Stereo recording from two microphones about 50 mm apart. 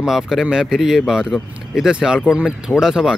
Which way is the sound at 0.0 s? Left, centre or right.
Centre.